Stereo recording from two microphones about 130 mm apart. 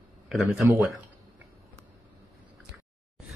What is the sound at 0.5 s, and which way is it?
Speech, 15° right (ahead or behind).